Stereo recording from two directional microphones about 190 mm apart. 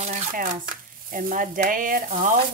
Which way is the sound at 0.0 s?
45° right (ahead or behind).